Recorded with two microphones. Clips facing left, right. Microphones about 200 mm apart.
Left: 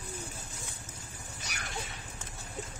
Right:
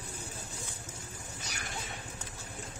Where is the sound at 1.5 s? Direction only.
65° left (ahead or behind).